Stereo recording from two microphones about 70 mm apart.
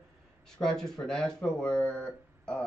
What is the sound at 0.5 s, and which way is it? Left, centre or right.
Speech, centre.